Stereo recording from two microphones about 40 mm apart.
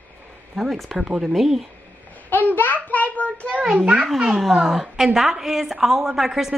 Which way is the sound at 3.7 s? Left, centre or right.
Right.